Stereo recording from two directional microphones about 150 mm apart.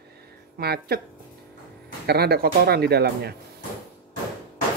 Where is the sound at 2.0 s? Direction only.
90° right.